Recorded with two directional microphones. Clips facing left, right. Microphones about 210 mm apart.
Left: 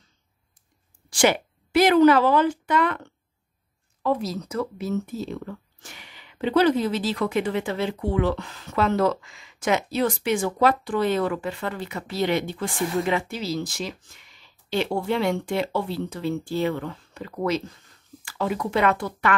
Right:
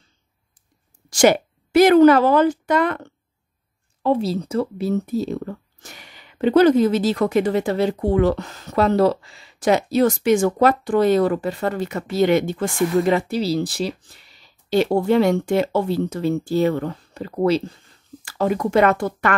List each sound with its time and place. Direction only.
1.1 s speech: 45° right (ahead or behind)
4.0 s speech: 30° right (ahead or behind)
18.2 s speech: 45° right (ahead or behind)